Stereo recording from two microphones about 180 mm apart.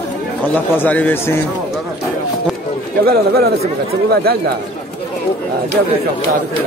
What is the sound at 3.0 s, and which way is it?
Speech, 60° right (ahead or behind).